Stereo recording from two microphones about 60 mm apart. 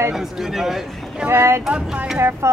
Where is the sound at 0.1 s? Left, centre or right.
Centre.